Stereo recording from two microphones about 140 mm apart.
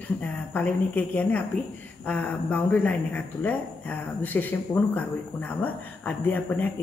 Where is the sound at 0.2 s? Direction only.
10° left (ahead or behind).